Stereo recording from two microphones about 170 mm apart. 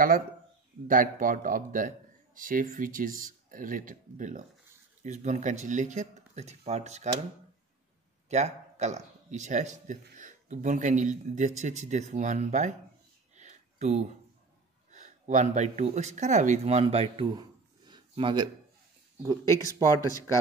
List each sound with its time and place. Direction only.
0.8 s a man's voice: 55° right (ahead or behind)
8.3 s a man's voice: 40° right (ahead or behind)
13.4 s a sound: 40° right (ahead or behind)
14.9 s speech: 45° right (ahead or behind)
19.4 s speech: 20° left (ahead or behind)